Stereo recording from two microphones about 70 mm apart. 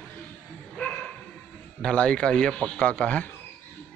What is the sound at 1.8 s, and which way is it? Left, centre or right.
Speech, centre.